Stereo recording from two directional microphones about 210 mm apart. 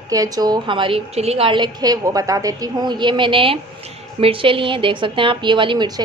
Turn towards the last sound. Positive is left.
turn(degrees=-20)  # may be behind; listen again after turning